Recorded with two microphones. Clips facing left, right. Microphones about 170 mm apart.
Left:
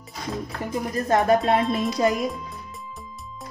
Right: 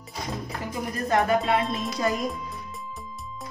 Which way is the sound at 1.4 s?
Centre (ahead or behind).